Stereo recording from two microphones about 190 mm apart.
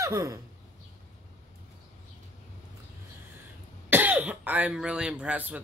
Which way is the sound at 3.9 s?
10° right (ahead or behind).